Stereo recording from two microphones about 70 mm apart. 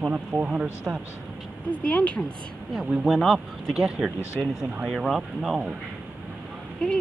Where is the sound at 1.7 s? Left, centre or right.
Centre.